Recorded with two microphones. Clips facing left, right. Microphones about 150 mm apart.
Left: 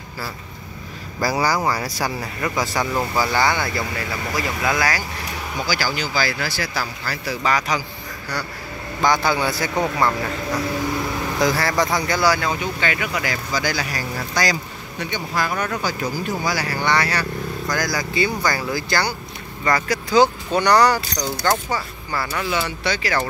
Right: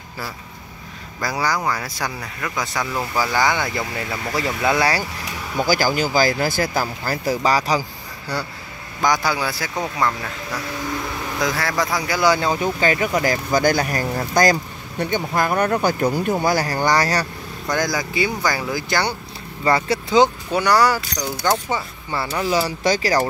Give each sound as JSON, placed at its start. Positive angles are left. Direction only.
{"t": 1.2, "sound": "speech", "side_deg": 5}
{"t": 3.3, "sound": "speech", "side_deg": -15}
{"t": 4.4, "sound": "speech", "side_deg": -30}
{"t": 5.7, "sound": "speech", "side_deg": -45}
{"t": 9.0, "sound": "speech", "side_deg": -10}
{"t": 11.3, "sound": "speech", "side_deg": 0}
{"t": 12.2, "sound": "speech", "side_deg": -20}
{"t": 12.4, "sound": "speech", "side_deg": -35}
{"t": 15.8, "sound": "speech", "side_deg": -55}
{"t": 17.6, "sound": "speech", "side_deg": -20}
{"t": 20.5, "sound": "speech", "side_deg": -5}
{"t": 21.6, "sound": "speech", "side_deg": -25}